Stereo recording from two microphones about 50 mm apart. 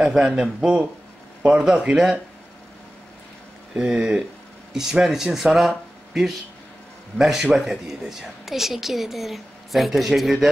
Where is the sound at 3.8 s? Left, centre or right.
Centre.